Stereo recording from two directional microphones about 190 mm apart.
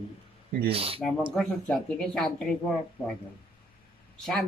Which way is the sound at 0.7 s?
30° right (ahead or behind).